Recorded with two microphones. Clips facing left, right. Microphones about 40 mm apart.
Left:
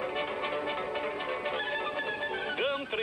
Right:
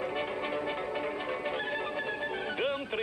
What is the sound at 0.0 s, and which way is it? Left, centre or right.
Music, centre.